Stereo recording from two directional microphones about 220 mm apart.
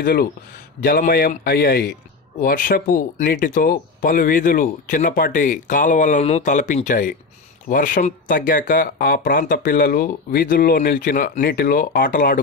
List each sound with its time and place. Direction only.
0.0 s a man's voice: 45° left (ahead or behind)